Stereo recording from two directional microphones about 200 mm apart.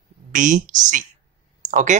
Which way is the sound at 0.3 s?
40° right (ahead or behind).